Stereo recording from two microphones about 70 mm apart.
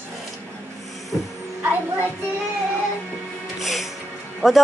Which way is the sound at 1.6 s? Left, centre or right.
Right.